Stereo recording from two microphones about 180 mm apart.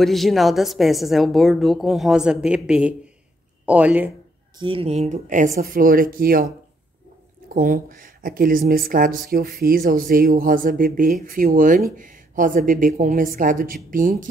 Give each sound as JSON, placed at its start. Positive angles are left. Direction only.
{"t": 0.0, "sound": "a woman's voice", "side_deg": 0}
{"t": 4.6, "sound": "speech", "side_deg": -30}
{"t": 7.4, "sound": "speech", "side_deg": -50}